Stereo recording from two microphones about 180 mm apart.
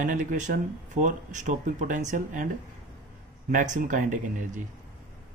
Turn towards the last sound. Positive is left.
turn(degrees=-45)  # may be behind; listen again after turning